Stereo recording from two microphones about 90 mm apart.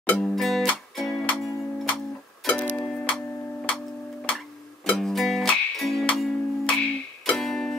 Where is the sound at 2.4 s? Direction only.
15° left (ahead or behind).